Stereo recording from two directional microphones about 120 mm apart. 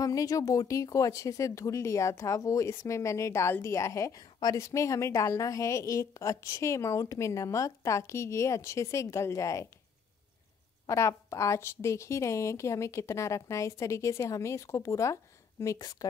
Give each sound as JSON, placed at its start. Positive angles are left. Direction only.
{"t": 0.0, "sound": "speech", "side_deg": 30}
{"t": 10.9, "sound": "speech", "side_deg": 25}